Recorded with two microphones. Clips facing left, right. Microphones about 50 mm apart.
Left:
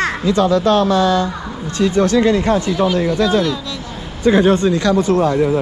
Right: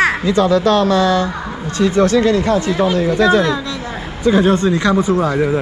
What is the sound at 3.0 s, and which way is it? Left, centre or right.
Speech, right.